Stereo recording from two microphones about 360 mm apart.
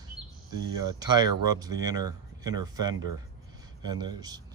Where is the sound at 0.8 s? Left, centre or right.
Centre.